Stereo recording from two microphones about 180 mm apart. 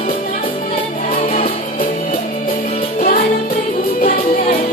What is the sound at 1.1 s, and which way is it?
Music, 50° left (ahead or behind).